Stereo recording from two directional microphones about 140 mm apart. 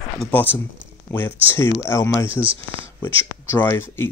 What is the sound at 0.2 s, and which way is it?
Speech, 10° left (ahead or behind).